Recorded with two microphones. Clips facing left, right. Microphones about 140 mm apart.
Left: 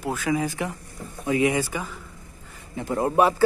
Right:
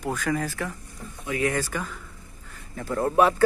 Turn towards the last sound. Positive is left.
turn(degrees=10)  # may be behind; listen again after turning